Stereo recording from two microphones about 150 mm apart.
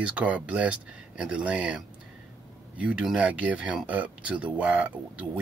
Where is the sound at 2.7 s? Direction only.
5° right (ahead or behind).